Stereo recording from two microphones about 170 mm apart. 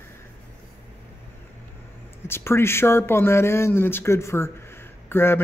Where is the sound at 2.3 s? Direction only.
15° left (ahead or behind).